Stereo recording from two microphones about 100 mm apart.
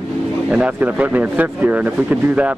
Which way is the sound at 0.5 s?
15° right (ahead or behind).